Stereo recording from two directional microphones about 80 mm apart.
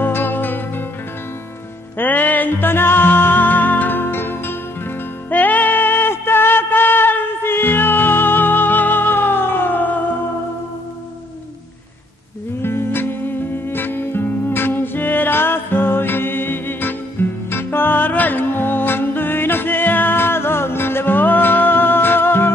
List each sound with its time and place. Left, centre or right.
0.0 s music: left
2.0 s music: left
12.6 s music: left